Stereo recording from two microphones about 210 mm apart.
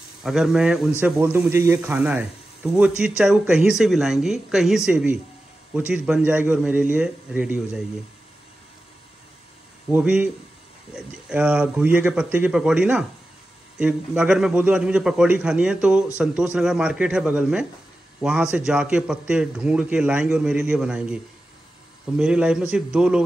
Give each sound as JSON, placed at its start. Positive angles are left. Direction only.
{"t": 0.2, "sound": "a man's voice", "side_deg": 0}
{"t": 9.8, "sound": "a man's voice", "side_deg": -5}